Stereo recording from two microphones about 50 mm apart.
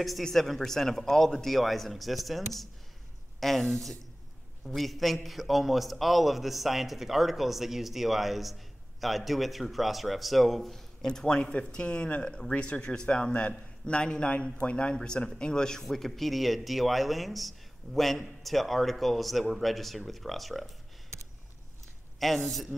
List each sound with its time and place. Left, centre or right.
0.2 s a man's voice: centre
13.3 s a man's voice: left
13.8 s a man's voice: centre
22.2 s a man's voice: centre